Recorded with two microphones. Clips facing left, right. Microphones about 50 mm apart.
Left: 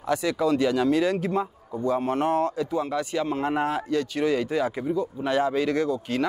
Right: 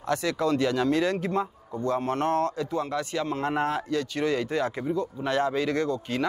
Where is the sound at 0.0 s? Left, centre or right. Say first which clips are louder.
Left 2 dB; centre.